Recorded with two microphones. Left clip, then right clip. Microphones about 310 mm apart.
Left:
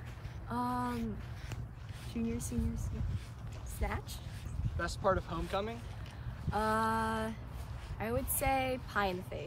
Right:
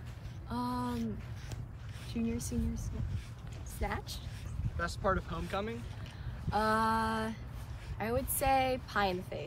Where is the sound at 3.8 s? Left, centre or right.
Centre.